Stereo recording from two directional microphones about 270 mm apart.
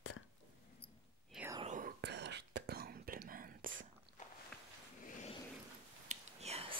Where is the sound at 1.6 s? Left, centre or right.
Right.